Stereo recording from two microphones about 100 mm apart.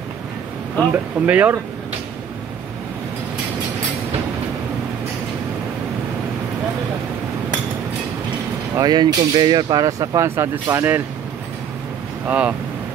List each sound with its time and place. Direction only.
0.9 s speech: 15° right (ahead or behind)
8.7 s speech: 45° right (ahead or behind); by 11.0 s 25° right (ahead or behind)
12.3 s speech: 15° right (ahead or behind)